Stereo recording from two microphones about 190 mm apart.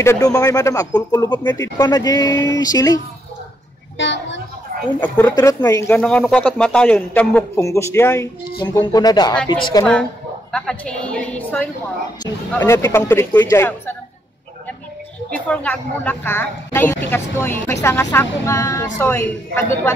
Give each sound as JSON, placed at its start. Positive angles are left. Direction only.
{"t": 0.0, "sound": "a woman's voice", "side_deg": 15}
{"t": 4.0, "sound": "a woman's voice", "side_deg": 70}
{"t": 5.0, "sound": "a woman's voice", "side_deg": 10}
{"t": 5.3, "sound": "a woman's voice", "side_deg": 20}
{"t": 10.5, "sound": "a woman's voice", "side_deg": 5}
{"t": 15.3, "sound": "a woman's voice", "side_deg": 5}